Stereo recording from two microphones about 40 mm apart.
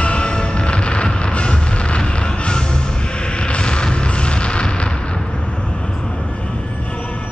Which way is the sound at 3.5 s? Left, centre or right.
Left.